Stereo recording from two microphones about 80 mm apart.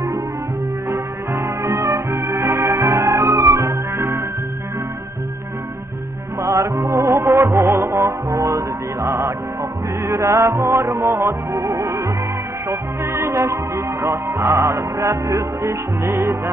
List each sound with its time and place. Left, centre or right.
0.8 s music: right
6.4 s music: right